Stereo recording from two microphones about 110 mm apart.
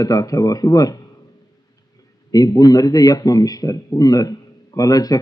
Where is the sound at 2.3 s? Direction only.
35° left (ahead or behind).